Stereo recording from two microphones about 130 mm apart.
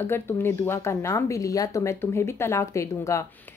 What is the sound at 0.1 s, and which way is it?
A woman's voice, 20° left (ahead or behind).